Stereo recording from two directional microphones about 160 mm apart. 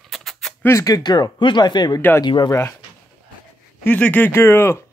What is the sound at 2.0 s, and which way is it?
Speech, 15° left (ahead or behind).